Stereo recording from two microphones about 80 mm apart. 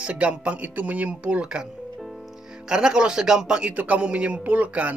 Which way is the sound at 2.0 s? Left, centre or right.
Centre.